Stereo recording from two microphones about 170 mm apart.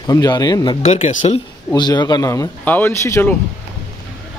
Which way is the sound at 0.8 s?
45° left (ahead or behind).